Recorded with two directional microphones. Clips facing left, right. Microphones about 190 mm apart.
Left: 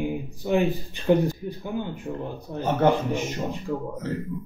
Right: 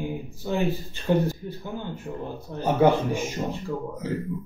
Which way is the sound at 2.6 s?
10° right (ahead or behind).